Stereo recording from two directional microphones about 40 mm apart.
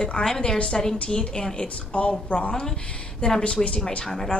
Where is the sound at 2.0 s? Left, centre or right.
Left.